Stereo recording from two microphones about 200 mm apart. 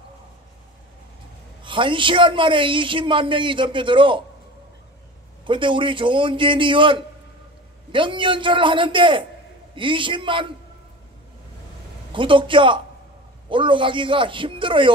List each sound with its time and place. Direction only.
1.6 s a man's voice: 25° right (ahead or behind)
5.4 s a man's voice: 25° right (ahead or behind)
12.1 s a man's voice: 25° right (ahead or behind)